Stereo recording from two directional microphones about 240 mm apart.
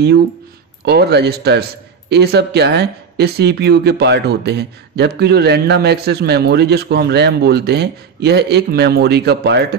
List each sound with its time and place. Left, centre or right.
0.8 s a man's voice: right